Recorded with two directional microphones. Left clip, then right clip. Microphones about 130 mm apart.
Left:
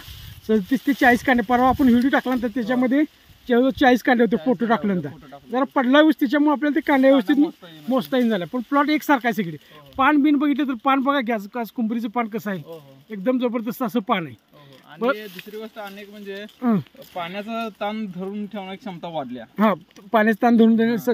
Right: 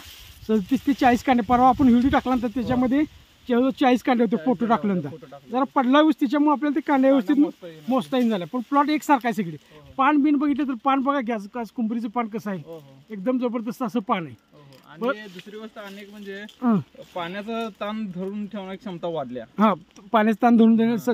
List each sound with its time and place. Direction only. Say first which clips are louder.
0.7 s speech: left 2 dB; 5° left (ahead or behind)
9.9 s speech: left 2 dB; 25° left (ahead or behind)
15.7 s speech: left 4 dB; 15° right (ahead or behind)
16.5 s speech: left 1 dB; 5° left (ahead or behind)
17.1 s speech: left 1 dB; 15° right (ahead or behind)
19.5 s speech: left 1 dB; 5° left (ahead or behind)